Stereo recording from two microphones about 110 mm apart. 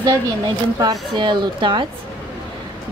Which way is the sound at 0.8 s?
40° right (ahead or behind).